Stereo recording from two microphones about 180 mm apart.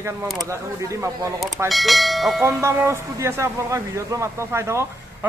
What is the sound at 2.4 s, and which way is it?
A man's voice, 15° right (ahead or behind).